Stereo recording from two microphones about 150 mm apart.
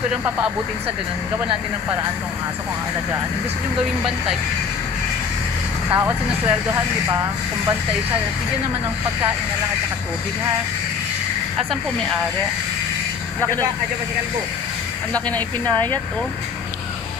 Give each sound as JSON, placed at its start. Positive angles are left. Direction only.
{"t": 5.9, "sound": "speech", "side_deg": -15}
{"t": 15.1, "sound": "speech", "side_deg": 10}
{"t": 15.6, "sound": "speech", "side_deg": -30}